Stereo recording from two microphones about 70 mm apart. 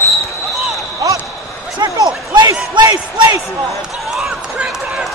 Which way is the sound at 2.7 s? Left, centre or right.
Right.